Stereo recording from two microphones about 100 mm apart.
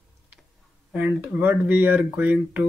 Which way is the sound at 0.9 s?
15° right (ahead or behind).